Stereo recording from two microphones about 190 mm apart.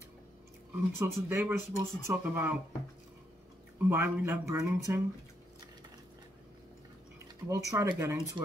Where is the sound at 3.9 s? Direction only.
10° right (ahead or behind).